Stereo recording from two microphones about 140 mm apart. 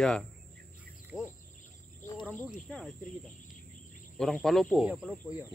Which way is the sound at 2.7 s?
Centre (ahead or behind).